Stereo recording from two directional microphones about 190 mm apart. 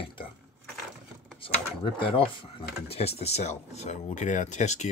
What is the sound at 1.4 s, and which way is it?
Speech, 25° left (ahead or behind).